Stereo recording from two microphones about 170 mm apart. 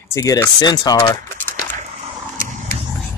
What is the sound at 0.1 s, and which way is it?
Speech, 15° left (ahead or behind).